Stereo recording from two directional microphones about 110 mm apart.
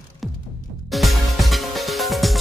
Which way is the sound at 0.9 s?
Centre (ahead or behind).